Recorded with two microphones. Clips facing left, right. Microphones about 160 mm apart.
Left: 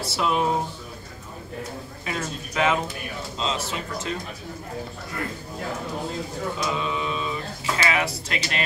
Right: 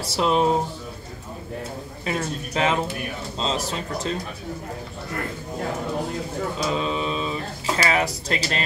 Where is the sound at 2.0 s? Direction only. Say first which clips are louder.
Right 4 dB; 30° right (ahead or behind).